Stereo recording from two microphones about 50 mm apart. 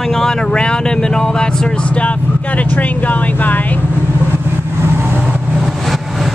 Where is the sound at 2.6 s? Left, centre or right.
Left.